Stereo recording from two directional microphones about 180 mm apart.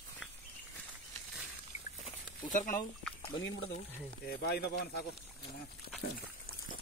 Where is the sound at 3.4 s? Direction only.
90° left.